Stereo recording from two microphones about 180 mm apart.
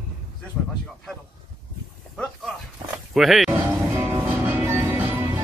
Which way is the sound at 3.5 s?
15° right (ahead or behind).